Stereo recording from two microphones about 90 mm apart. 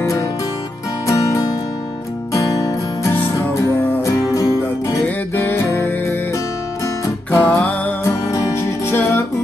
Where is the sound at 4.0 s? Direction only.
40° left (ahead or behind).